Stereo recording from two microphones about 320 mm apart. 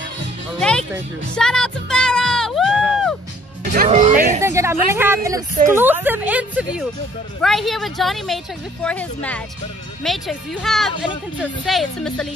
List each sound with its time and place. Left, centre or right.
0.6 s music: centre
1.3 s a sound: centre
3.7 s speech: right
4.4 s a woman's voice: centre